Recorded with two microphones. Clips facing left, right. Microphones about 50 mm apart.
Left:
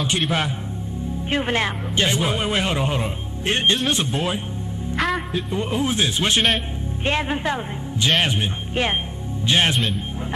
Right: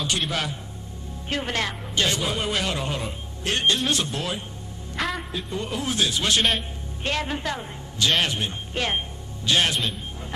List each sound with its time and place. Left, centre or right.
0.3 s a man's voice: left
4.9 s music: centre
5.5 s a man's voice: left